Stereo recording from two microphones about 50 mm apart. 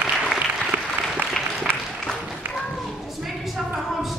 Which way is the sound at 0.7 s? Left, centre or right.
Right.